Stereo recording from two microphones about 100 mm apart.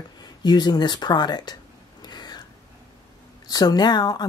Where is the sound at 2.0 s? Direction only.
45° left (ahead or behind).